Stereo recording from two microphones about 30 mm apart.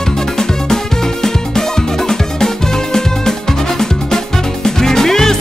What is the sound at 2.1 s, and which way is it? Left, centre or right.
Music, centre.